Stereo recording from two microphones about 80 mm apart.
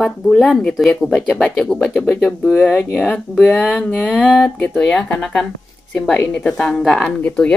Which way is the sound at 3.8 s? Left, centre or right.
Centre.